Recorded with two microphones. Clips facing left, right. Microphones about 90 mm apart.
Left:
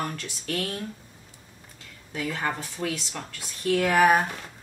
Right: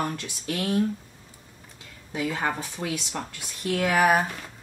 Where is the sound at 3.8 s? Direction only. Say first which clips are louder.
Left 1 dB; 5° right (ahead or behind).